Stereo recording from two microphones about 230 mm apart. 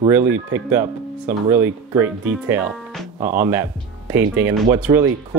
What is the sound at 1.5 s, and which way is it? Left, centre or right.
Speech, centre.